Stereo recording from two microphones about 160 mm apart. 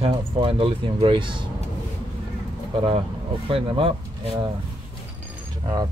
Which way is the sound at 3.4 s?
35° right (ahead or behind).